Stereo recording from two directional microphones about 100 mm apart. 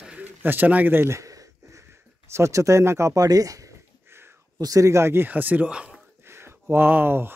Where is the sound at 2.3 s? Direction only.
30° right (ahead or behind); by 6.0 s 10° right (ahead or behind).